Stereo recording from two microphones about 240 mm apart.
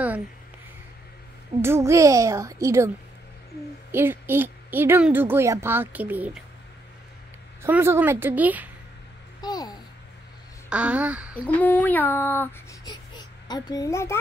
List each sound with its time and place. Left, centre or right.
1.6 s a woman's voice: centre
3.9 s a woman's voice: centre
7.6 s a woman's voice: centre
9.4 s a sound: centre
10.7 s speech: centre
11.4 s speech: centre